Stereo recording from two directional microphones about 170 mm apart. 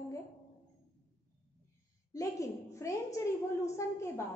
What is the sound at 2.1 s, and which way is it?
A woman's voice, 20° left (ahead or behind).